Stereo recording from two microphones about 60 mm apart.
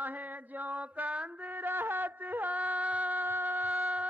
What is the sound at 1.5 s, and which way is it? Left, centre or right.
Music, right.